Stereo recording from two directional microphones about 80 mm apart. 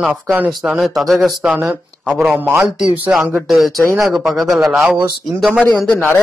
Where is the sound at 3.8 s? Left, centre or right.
Right.